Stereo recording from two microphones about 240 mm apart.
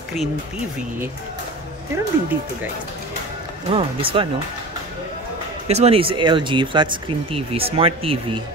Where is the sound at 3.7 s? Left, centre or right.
Right.